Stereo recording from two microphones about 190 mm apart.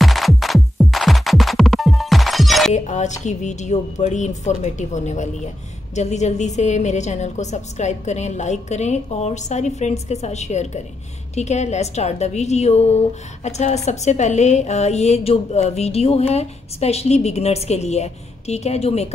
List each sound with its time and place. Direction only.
0.0 s music: centre (ahead or behind)
2.7 s a woman's voice: 40° left (ahead or behind)